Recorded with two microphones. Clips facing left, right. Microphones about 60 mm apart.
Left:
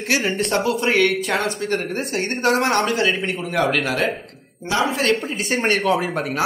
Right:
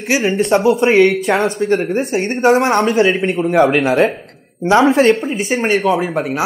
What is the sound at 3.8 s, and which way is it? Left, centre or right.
Speech, right.